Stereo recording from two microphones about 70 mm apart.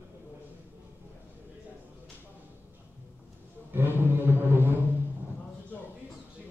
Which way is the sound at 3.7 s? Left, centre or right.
Right.